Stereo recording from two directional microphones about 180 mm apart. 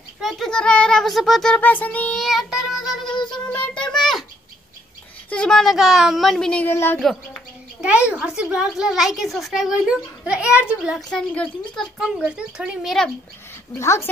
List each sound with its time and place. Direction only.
0.2 s a woman's voice: centre (ahead or behind)
3.4 s a sound: 5° left (ahead or behind)
5.3 s a woman's voice: 5° left (ahead or behind)
7.8 s a woman's voice: 5° right (ahead or behind)
13.7 s speech: 15° left (ahead or behind)